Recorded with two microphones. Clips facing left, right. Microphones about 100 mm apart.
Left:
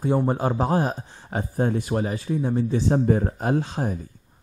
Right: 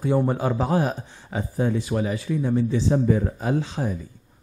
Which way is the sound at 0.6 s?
35° left (ahead or behind).